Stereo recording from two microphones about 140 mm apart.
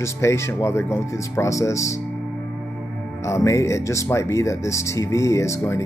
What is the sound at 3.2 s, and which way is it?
Speech, 20° left (ahead or behind).